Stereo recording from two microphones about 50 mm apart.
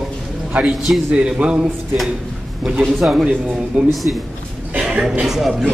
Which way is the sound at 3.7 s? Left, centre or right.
Centre.